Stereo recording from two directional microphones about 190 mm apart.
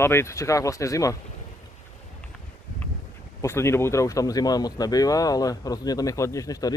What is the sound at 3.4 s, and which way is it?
Speech, 15° left (ahead or behind).